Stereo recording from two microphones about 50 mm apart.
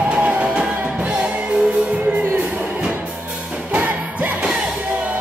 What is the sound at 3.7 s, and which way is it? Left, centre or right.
Music, right.